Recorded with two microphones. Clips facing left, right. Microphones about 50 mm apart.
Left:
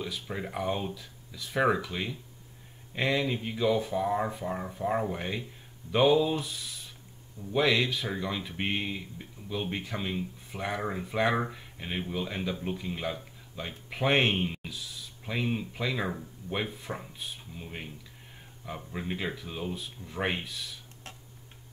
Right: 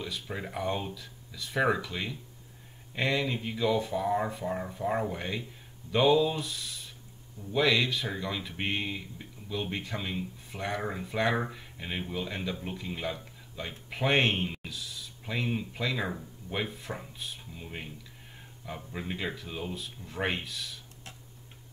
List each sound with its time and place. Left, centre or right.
0.0 s speech: centre